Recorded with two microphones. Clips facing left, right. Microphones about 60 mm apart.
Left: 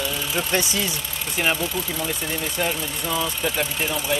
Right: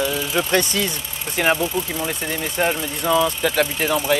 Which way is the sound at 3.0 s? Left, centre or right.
Right.